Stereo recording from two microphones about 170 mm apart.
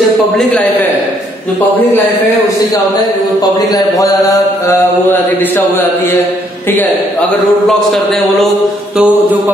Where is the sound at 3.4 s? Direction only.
20° left (ahead or behind).